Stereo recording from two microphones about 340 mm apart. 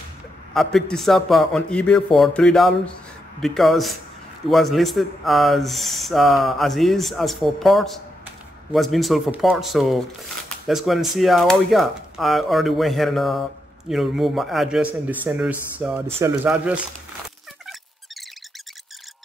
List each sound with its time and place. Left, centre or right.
0.6 s speech: centre